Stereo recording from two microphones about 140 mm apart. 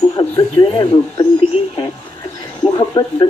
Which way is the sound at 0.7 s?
35° left (ahead or behind).